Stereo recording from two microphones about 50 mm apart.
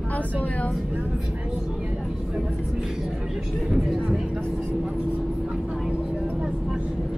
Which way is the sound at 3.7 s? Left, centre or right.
Centre.